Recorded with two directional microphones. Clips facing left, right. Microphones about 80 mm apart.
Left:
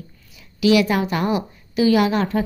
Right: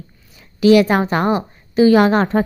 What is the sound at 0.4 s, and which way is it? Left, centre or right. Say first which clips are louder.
A woman's voice: right 5 dB; right.